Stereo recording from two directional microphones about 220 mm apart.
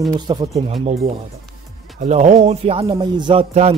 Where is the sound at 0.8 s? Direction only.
30° right (ahead or behind).